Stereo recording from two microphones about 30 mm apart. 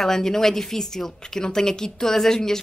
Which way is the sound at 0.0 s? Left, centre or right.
Centre.